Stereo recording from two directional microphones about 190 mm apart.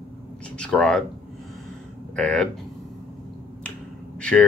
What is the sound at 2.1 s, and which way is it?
Speech, 5° left (ahead or behind).